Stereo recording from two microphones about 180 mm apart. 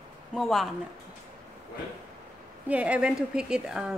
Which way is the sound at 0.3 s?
Centre (ahead or behind).